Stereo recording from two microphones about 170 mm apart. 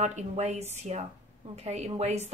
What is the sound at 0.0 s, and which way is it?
Speech, 40° right (ahead or behind).